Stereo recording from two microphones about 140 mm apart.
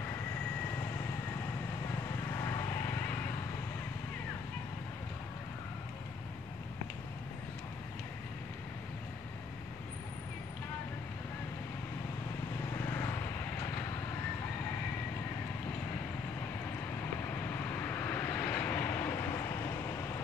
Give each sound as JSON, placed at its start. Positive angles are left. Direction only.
{"t": 2.4, "sound": "vehicle", "side_deg": 25}
{"t": 12.8, "sound": "vehicle", "side_deg": 20}
{"t": 17.6, "sound": "vehicle", "side_deg": 15}